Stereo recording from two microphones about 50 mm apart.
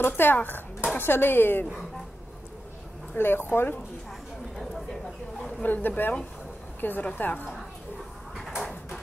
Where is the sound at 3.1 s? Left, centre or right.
Left.